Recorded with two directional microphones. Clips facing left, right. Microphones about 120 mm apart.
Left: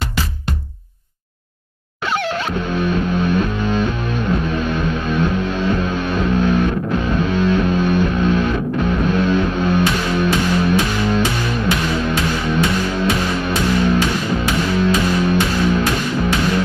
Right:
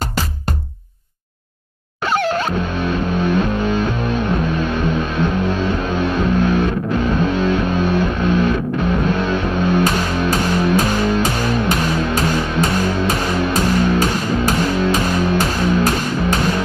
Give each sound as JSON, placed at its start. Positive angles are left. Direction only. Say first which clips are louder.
{"t": 2.0, "sound": "music", "louder": "right 3 dB", "side_deg": -40}
{"t": 9.8, "sound": "music", "louder": "even", "side_deg": -40}